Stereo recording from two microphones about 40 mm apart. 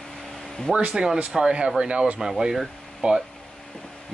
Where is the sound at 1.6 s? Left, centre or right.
Right.